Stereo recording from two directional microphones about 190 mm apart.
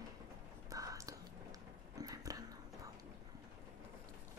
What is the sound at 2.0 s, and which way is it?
Dog, 20° right (ahead or behind).